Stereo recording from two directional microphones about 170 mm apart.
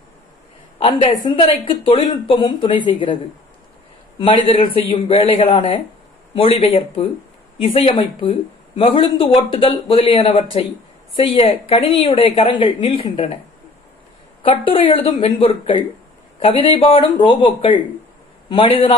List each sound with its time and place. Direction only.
0.7 s a woman's voice: 30° left (ahead or behind)
4.2 s speech: 30° left (ahead or behind)
14.4 s speech: 30° left (ahead or behind)